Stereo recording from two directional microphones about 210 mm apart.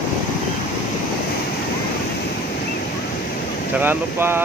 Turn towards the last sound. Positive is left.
turn(degrees=-10)  # may be behind; listen again after turning